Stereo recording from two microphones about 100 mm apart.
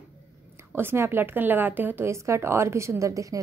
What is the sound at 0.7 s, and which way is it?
A woman's voice, 25° right (ahead or behind).